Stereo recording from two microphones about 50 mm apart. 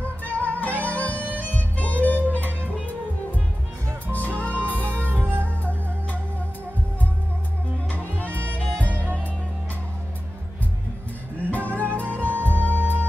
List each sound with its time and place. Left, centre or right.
0.0 s music: left
4.1 s music: left
4.6 s music: right
8.2 s music: left
11.5 s music: left